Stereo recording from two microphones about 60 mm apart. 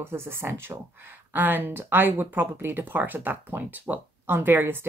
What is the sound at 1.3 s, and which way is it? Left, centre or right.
Speech, right.